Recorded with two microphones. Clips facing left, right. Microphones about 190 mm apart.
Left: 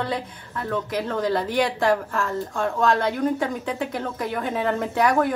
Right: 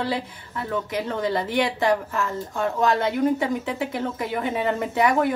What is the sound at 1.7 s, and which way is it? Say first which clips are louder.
Speech: left 1 dB; 20° right (ahead or behind).